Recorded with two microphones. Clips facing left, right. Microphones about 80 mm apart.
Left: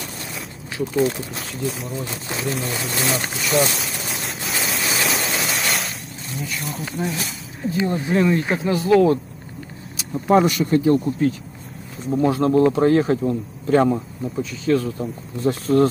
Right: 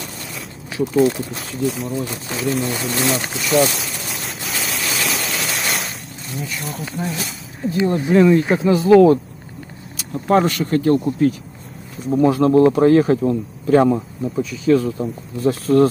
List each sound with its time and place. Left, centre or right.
0.7 s a man's voice: centre
2.6 s a sound: centre
6.3 s a man's voice: centre
8.6 s speech: centre
10.1 s speech: centre
12.1 s a man's voice: centre